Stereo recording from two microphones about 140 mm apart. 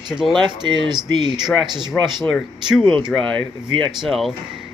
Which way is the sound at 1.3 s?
5° right (ahead or behind).